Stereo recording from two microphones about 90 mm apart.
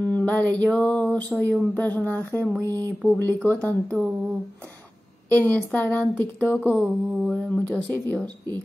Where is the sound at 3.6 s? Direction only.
15° left (ahead or behind).